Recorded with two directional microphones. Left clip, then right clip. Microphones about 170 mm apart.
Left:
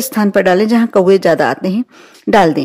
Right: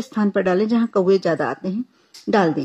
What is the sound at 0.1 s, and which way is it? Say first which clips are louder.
A woman's voice: left 8 dB; 50° left (ahead or behind).